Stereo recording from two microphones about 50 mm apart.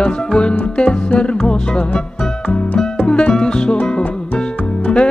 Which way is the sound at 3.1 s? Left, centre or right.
Centre.